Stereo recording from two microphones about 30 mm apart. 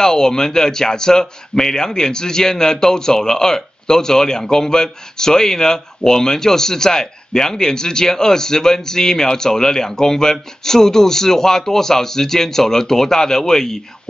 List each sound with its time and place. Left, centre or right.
0.0 s a man's voice: centre